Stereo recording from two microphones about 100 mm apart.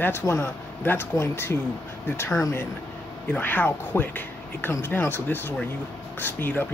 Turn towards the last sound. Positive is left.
turn(degrees=20)  # may be behind; listen again after turning